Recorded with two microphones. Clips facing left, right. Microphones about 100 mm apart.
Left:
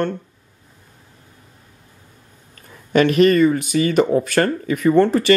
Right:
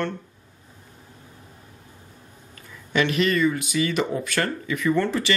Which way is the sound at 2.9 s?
45° left (ahead or behind).